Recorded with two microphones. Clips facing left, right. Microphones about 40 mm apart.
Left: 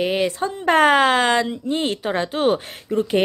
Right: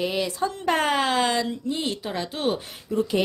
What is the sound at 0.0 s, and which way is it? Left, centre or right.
Speech, left.